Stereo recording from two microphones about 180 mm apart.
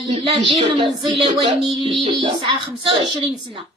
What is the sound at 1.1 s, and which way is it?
Speech, 25° right (ahead or behind).